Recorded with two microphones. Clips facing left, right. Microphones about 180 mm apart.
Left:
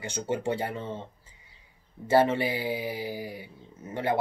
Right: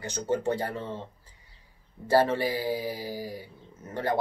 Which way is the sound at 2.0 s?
20° left (ahead or behind).